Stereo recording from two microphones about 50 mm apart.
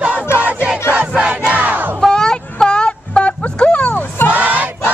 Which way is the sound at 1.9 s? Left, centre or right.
Centre.